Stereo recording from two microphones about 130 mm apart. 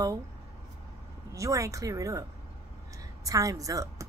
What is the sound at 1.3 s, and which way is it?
Speech, 25° right (ahead or behind).